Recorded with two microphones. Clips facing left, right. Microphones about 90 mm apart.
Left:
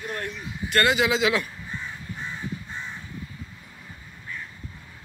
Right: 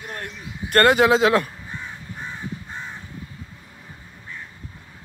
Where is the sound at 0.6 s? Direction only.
50° right (ahead or behind).